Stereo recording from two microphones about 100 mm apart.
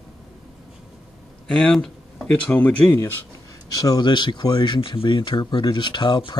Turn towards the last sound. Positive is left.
turn(degrees=45)  # may be behind; listen again after turning